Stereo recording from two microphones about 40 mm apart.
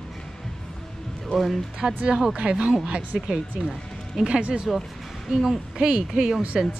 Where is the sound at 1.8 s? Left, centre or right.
Centre.